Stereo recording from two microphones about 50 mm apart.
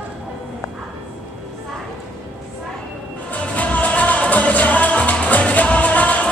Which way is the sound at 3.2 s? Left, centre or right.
Left.